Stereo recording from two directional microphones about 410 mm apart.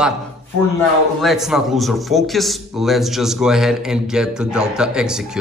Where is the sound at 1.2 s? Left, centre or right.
Centre.